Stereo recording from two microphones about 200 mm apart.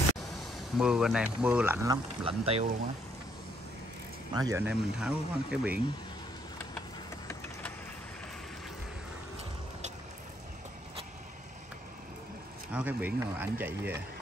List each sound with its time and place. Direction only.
0.3 s speech: 5° right (ahead or behind)
2.2 s speech: 30° right (ahead or behind)
4.3 s speech: 20° right (ahead or behind)
4.6 s speech: 5° right (ahead or behind)
12.7 s speech: 10° right (ahead or behind)